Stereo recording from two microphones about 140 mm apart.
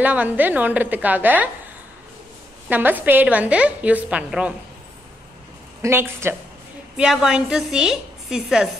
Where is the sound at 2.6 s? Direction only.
10° right (ahead or behind).